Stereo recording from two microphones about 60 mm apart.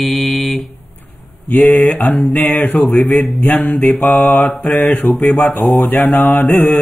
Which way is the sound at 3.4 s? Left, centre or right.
Left.